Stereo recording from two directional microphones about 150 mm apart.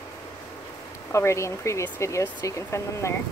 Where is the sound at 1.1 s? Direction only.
20° left (ahead or behind).